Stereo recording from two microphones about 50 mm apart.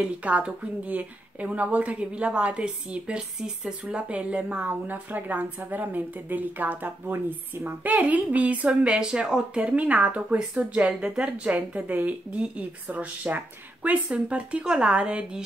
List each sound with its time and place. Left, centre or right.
0.0 s a woman's voice: right
3.3 s speech: centre
3.8 s a woman's voice: right